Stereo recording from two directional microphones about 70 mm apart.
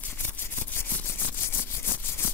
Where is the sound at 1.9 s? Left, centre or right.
Left.